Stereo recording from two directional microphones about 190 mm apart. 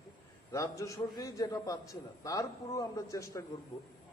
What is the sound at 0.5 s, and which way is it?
A man's voice, 15° left (ahead or behind).